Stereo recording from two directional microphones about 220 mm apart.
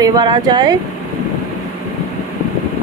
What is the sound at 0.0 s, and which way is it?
Speech, 20° right (ahead or behind).